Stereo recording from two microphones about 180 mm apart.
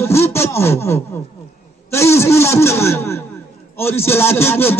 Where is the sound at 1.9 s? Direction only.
15° left (ahead or behind).